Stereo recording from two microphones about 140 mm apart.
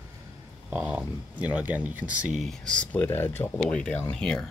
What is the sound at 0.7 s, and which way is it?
Speech, 10° right (ahead or behind).